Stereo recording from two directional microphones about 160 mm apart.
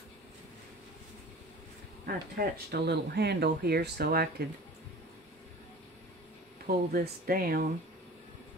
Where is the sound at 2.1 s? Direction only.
80° right.